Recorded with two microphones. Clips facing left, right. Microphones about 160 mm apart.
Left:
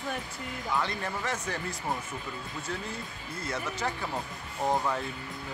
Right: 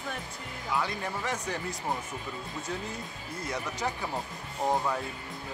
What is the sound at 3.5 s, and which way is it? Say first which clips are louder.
Speech: even; 15° right (ahead or behind).